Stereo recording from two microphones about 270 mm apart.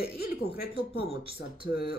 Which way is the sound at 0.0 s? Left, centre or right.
Left.